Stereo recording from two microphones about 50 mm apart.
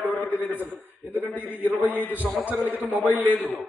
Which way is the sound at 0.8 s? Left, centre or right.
Right.